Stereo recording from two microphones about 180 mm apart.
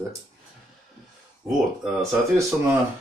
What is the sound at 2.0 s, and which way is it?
Speech, 15° right (ahead or behind).